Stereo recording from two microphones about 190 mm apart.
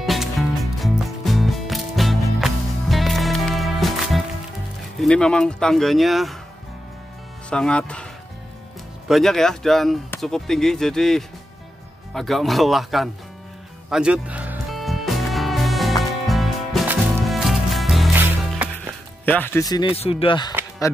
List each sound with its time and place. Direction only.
0.0 s music: centre (ahead or behind)
4.9 s speech: 5° left (ahead or behind)
7.4 s speech: 5° left (ahead or behind)
9.1 s speech: centre (ahead or behind)
13.8 s music: 5° right (ahead or behind)
19.2 s speech: 10° left (ahead or behind); by 20.5 s 25° left (ahead or behind)